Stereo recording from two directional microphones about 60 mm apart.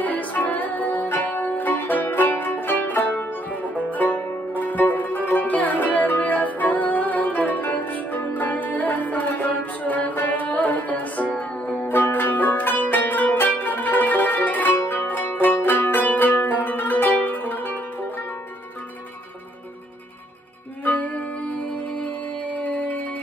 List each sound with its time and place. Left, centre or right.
0.0 s music: left
11.3 s zither: left
15.4 s music: left
20.8 s music: left